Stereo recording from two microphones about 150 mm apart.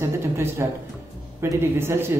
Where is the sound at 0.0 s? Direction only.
15° right (ahead or behind).